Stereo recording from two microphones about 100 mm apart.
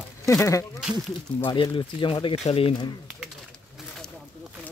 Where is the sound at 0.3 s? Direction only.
30° left (ahead or behind).